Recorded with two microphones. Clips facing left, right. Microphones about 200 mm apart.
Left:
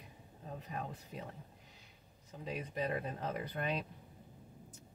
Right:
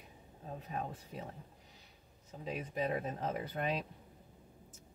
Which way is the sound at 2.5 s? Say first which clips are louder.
Right 2 dB; centre (ahead or behind).